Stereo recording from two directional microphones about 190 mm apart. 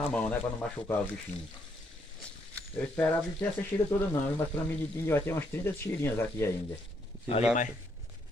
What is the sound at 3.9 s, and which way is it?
Speech, 20° left (ahead or behind).